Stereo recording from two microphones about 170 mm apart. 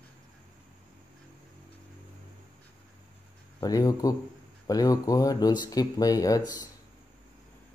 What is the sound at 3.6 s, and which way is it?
Speech, 20° left (ahead or behind).